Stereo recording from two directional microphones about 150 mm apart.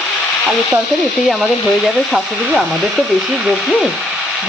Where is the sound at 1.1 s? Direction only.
Centre (ahead or behind).